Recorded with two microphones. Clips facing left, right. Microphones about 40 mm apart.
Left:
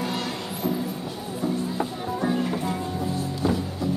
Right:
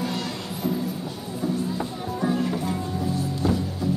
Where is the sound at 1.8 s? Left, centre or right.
Centre.